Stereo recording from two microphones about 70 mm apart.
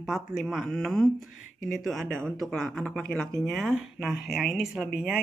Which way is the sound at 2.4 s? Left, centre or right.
Centre.